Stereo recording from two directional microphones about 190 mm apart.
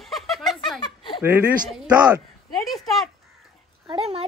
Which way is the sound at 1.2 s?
10° right (ahead or behind).